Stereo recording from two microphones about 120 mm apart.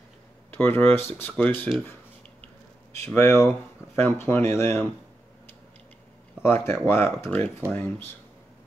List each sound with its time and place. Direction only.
0.5 s speech: 15° left (ahead or behind)
3.2 s speech: 20° left (ahead or behind)
6.4 s speech: 20° left (ahead or behind)